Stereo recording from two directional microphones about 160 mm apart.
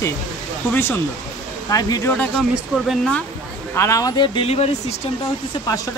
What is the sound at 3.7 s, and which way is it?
Speech, 15° left (ahead or behind).